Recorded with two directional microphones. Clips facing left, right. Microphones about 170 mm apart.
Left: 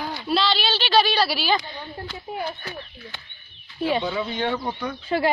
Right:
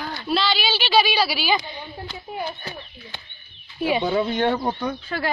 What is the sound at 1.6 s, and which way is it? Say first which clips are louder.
Speech: even; 15° right (ahead or behind).